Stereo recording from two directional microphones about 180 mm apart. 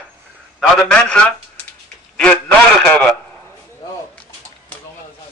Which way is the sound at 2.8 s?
5° left (ahead or behind).